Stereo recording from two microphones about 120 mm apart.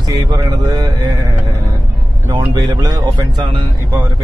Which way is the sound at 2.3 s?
35° right (ahead or behind).